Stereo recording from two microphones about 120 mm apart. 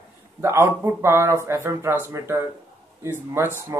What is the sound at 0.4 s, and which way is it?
Speech, 20° right (ahead or behind).